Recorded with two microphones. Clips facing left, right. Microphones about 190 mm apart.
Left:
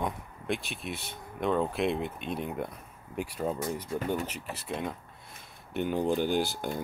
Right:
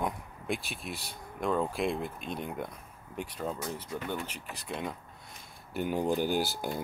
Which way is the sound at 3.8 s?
30° left (ahead or behind).